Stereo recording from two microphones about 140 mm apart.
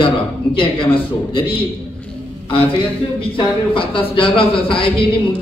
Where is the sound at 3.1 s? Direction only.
40° left (ahead or behind).